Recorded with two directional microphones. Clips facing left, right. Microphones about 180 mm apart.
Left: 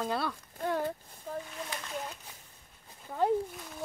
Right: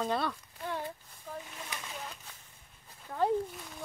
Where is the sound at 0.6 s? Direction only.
45° left (ahead or behind).